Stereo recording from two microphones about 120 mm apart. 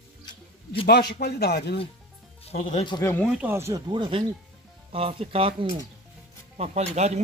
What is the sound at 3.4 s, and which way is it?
Speech, 20° right (ahead or behind).